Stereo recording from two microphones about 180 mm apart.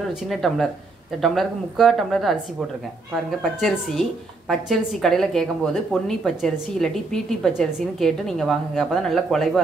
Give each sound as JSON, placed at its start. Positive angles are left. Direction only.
{"t": 0.3, "sound": "a woman's voice", "side_deg": 0}